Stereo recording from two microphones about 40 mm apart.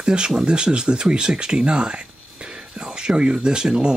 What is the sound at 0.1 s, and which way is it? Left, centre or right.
Speech, right.